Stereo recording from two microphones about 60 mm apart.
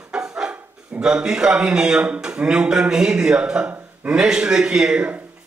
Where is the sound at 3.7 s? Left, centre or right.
Right.